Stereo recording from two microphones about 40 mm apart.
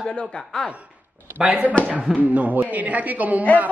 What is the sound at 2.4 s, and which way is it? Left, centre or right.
A woman's voice, right.